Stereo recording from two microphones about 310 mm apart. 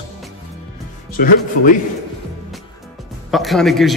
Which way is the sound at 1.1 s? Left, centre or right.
Left.